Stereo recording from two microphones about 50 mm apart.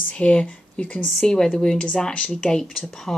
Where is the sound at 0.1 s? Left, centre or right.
Left.